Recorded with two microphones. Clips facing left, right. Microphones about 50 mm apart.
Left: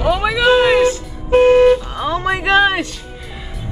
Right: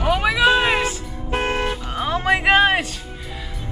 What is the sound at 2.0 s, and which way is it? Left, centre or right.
Speech, right.